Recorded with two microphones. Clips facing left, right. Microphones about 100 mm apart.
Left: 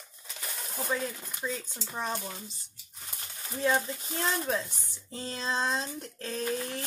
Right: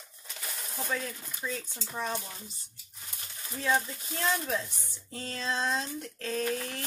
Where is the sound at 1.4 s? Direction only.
10° left (ahead or behind).